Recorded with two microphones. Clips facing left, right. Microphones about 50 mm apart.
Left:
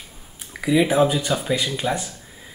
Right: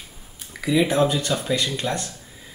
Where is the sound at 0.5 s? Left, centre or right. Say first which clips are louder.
Left 2 dB; centre.